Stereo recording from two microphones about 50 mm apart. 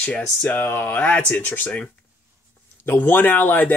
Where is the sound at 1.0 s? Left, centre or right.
Left.